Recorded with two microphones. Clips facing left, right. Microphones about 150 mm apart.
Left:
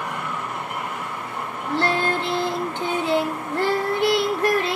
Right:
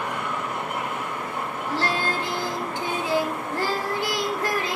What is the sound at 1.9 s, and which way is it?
Child singing, 60° left (ahead or behind).